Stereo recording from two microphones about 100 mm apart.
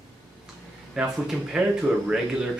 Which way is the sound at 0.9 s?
10° right (ahead or behind).